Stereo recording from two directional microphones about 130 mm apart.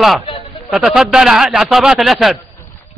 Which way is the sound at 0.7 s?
5° right (ahead or behind).